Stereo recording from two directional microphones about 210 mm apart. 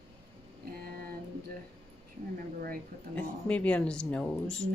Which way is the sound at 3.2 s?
5° left (ahead or behind).